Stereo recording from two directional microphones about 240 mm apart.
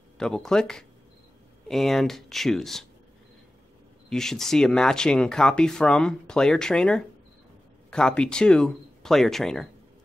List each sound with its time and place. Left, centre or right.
0.2 s speech: centre
4.1 s speech: centre